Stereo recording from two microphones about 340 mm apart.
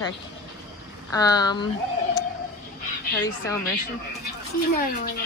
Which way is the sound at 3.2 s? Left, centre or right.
Centre.